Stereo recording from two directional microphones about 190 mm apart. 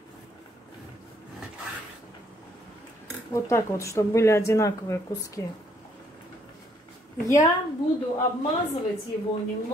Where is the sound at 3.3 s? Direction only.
15° left (ahead or behind).